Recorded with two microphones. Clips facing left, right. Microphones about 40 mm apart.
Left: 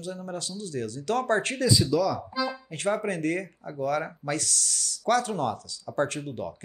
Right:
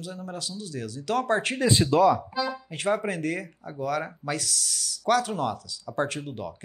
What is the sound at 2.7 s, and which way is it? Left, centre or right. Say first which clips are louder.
Speech: right 1 dB; centre.